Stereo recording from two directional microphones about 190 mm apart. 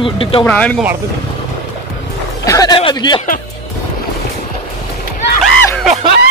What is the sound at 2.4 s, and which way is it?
Speech, 20° left (ahead or behind).